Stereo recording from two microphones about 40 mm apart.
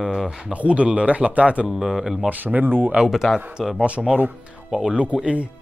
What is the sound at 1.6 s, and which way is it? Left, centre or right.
Speech, centre.